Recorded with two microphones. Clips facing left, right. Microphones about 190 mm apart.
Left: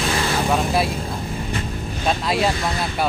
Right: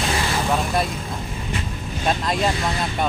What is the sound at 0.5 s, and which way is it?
Speech, 5° left (ahead or behind).